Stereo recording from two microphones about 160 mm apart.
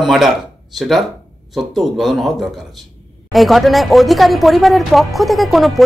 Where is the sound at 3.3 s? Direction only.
Centre (ahead or behind).